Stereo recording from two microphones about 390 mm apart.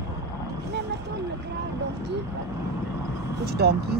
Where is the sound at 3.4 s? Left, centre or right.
Right.